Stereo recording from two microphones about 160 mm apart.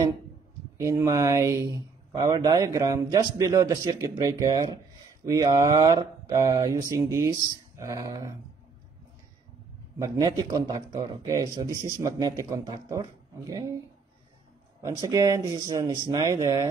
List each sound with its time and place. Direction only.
0.7 s speech: 20° right (ahead or behind)
9.9 s speech: 20° right (ahead or behind)
14.8 s speech: 20° right (ahead or behind)